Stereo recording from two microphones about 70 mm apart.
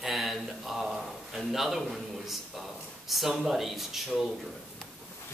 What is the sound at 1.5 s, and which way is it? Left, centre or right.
Speech, centre.